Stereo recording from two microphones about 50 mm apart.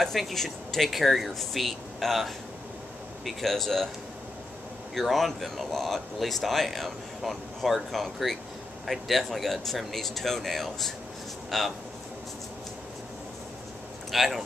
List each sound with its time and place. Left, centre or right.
0.0 s speech: centre
4.9 s speech: centre
14.1 s speech: centre